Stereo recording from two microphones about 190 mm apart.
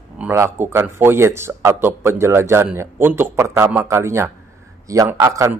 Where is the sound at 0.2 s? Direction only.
10° right (ahead or behind).